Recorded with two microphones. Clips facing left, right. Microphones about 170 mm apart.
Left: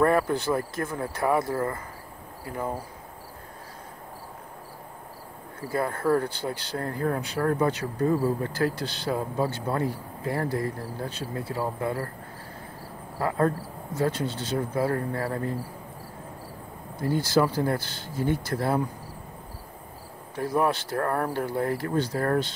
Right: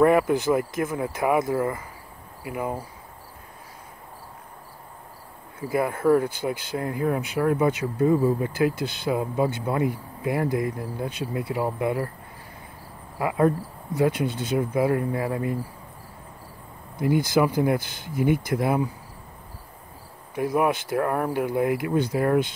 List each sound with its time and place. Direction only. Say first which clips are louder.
0.0 s speech: right 4 dB; 15° right (ahead or behind)
5.6 s speech: right 4 dB; 15° right (ahead or behind)
13.2 s speech: right 3 dB; 15° right (ahead or behind)
17.0 s speech: right 2 dB; 15° right (ahead or behind)
20.3 s speech: right 2 dB; 10° right (ahead or behind)